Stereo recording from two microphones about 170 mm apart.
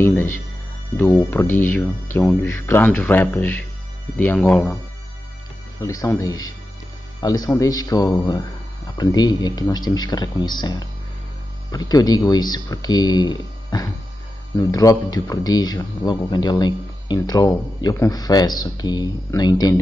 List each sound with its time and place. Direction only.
0.0 s speech: 15° left (ahead or behind)
5.8 s speech: 20° left (ahead or behind)